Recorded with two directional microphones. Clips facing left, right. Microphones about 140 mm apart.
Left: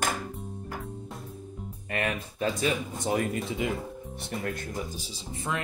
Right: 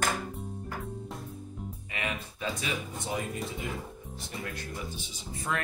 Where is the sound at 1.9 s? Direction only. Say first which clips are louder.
Left 6 dB; 50° left (ahead or behind).